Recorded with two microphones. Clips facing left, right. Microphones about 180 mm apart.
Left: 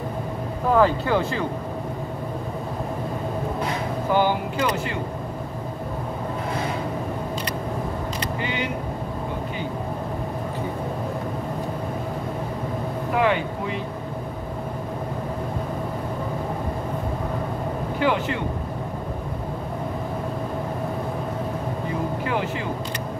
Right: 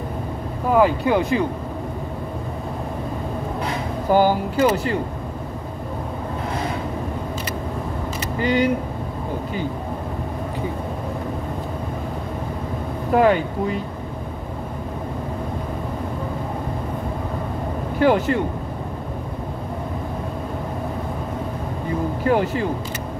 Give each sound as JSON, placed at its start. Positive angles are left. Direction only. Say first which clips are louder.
{"t": 0.7, "sound": "speech", "louder": "right 3 dB", "side_deg": -15}
{"t": 4.1, "sound": "speech", "louder": "right 5 dB", "side_deg": -40}
{"t": 8.4, "sound": "speech", "louder": "right 11 dB", "side_deg": -40}
{"t": 13.1, "sound": "speech", "louder": "right 6 dB", "side_deg": -40}
{"t": 17.9, "sound": "speech", "louder": "right 6 dB", "side_deg": -40}
{"t": 22.2, "sound": "speech", "louder": "right 6 dB", "side_deg": -40}